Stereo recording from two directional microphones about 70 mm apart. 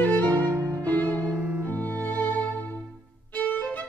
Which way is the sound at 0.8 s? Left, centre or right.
Left.